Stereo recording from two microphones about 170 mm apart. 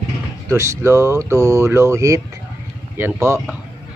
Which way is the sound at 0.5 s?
15° right (ahead or behind).